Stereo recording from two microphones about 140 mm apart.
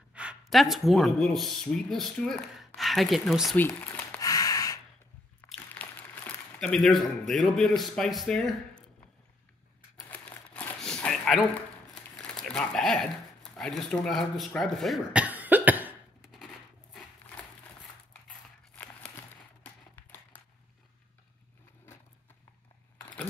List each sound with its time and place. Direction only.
0.1 s speech: 5° right (ahead or behind)
3.5 s speech: 15° left (ahead or behind)
4.2 s a sound: 25° left (ahead or behind)
5.8 s speech: 10° left (ahead or behind)
10.0 s crumpling: 10° left (ahead or behind)
11.9 s speech: 5° left (ahead or behind)
15.2 s cough: 10° right (ahead or behind)
19.6 s a sound: 10° left (ahead or behind)